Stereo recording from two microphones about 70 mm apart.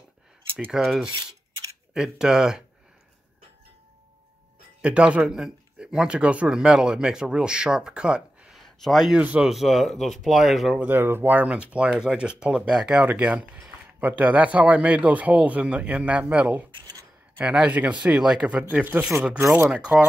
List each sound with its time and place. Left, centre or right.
0.7 s speech: centre
4.8 s speech: centre
8.5 s a sound: centre
9.1 s speech: right
9.4 s speech: centre
10.8 s speech: right